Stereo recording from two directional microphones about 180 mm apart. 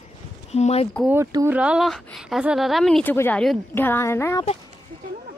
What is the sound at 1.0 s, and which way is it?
Speech, 15° right (ahead or behind).